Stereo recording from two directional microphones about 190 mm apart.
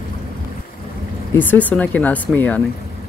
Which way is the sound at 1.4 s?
10° left (ahead or behind).